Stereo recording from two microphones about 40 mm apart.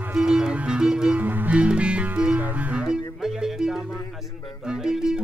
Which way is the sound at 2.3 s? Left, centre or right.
Right.